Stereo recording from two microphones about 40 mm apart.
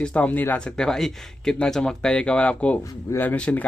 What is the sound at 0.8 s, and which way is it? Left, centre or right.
Speech, centre.